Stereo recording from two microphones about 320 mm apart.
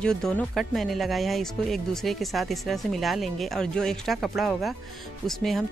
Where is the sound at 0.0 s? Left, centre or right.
Centre.